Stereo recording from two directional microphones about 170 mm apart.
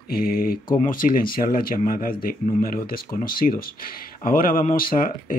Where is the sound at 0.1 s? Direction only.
60° left (ahead or behind).